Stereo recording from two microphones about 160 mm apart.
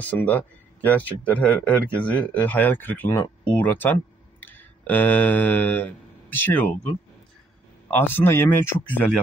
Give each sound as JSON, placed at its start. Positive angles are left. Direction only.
{"t": 0.0, "sound": "speech", "side_deg": 10}
{"t": 8.1, "sound": "speech", "side_deg": 15}